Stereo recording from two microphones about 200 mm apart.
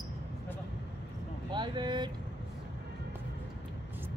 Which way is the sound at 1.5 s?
20° right (ahead or behind).